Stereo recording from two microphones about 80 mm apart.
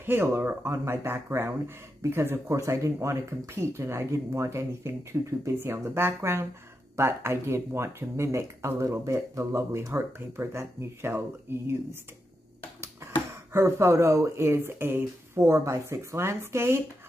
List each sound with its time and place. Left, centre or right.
0.0 s speech: right
13.5 s speech: right